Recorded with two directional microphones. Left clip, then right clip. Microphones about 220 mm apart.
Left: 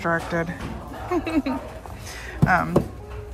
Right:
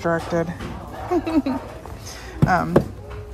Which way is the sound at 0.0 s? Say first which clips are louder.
Right 2 dB; 15° right (ahead or behind).